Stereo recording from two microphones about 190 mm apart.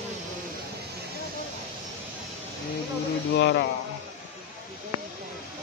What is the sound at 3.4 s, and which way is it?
Speech, 65° left (ahead or behind).